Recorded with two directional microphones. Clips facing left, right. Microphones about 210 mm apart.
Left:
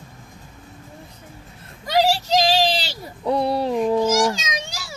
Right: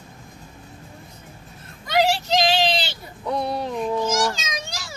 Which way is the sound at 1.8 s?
40° left (ahead or behind).